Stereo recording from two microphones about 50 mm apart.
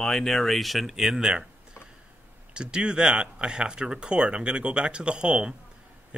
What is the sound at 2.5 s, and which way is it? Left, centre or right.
A man's voice, centre.